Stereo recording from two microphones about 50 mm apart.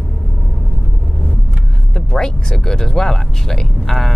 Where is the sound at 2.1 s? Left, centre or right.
Centre.